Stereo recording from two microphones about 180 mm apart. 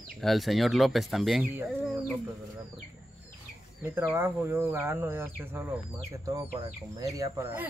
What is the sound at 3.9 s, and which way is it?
Speech, 15° right (ahead or behind).